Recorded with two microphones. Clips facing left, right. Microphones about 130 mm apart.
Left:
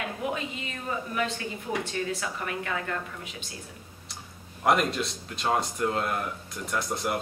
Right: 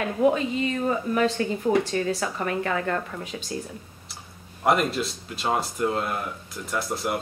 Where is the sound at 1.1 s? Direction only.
40° right (ahead or behind).